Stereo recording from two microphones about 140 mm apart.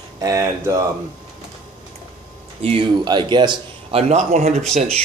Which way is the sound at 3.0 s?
30° right (ahead or behind).